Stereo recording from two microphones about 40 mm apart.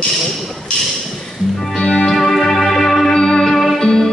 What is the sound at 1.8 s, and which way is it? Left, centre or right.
Music, left.